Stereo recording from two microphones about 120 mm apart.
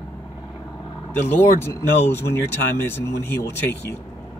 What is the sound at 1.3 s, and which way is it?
Speech, 20° left (ahead or behind).